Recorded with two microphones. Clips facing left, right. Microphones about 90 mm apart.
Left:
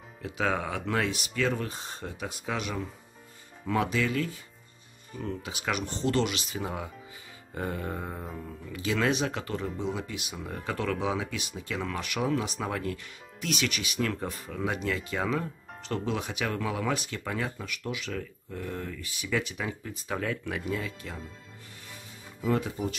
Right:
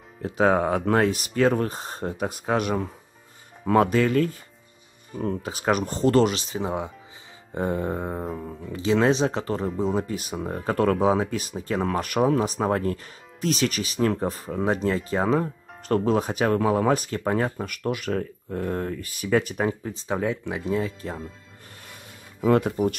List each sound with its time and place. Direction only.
0.2 s speech: 40° right (ahead or behind)
19.8 s speech: 30° right (ahead or behind)
22.4 s speech: 55° right (ahead or behind)